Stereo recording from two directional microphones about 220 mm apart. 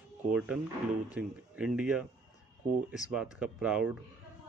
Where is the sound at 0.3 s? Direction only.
5° right (ahead or behind).